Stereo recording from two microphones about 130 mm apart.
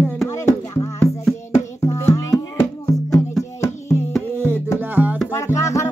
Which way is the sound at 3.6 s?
20° left (ahead or behind).